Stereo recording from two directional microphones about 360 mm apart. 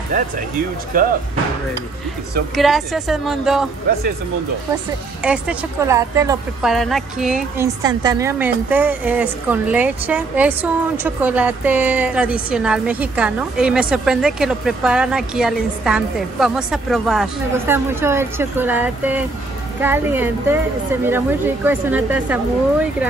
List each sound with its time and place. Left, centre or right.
0.9 s speech: right
2.5 s speech: centre
5.2 s speech: centre